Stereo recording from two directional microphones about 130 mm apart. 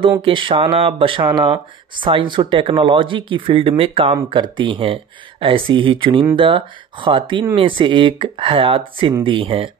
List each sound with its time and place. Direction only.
0.2 s speech: 40° right (ahead or behind)